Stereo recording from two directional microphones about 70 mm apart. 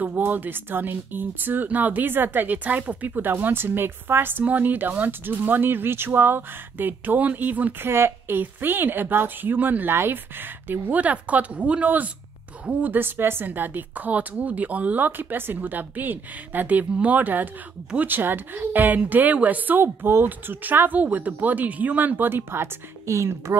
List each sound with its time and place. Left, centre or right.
0.0 s speech: right